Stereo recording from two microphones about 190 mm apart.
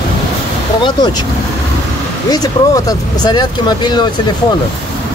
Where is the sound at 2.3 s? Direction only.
20° left (ahead or behind).